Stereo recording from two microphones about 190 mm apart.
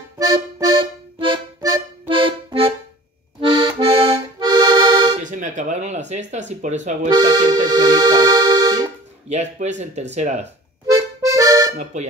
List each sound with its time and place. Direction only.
1.2 s music: 25° right (ahead or behind)
3.3 s accordion: 25° right (ahead or behind)
5.1 s speech: 40° right (ahead or behind)
7.1 s speech: 20° right (ahead or behind)
7.6 s accordion: 20° right (ahead or behind)
9.3 s speech: 35° right (ahead or behind)
11.2 s accordion: 20° right (ahead or behind)
11.7 s speech: 40° right (ahead or behind)